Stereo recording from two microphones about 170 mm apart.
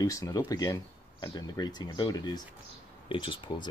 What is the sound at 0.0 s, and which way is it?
Speech, 20° left (ahead or behind).